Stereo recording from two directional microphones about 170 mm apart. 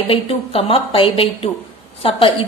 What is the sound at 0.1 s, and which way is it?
A woman's voice, 35° left (ahead or behind).